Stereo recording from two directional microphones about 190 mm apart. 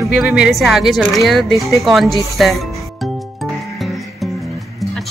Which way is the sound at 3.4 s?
Centre (ahead or behind).